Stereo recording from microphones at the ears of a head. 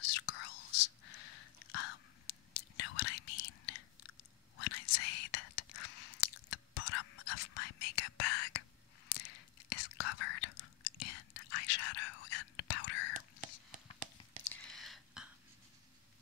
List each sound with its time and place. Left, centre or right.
0.0 s whispering: left